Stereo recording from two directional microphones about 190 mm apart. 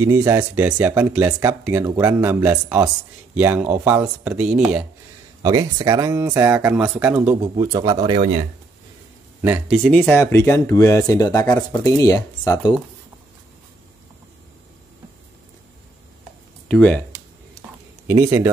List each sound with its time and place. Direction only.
0.0 s speech: 15° right (ahead or behind)
5.4 s speech: 20° right (ahead or behind)
7.9 s speech: 30° right (ahead or behind)
9.7 s speech: 5° left (ahead or behind); by 12.7 s 20° left (ahead or behind)
16.6 s speech: 5° left (ahead or behind)
17.6 s a sound: 10° right (ahead or behind)